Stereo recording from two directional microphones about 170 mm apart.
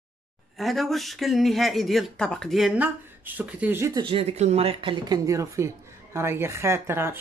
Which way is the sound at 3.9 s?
30° right (ahead or behind).